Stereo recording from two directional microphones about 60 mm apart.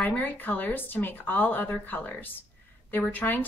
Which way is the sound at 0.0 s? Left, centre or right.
Left.